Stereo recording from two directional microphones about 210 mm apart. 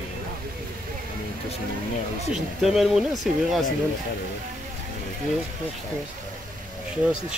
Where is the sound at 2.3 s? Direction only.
Centre (ahead or behind).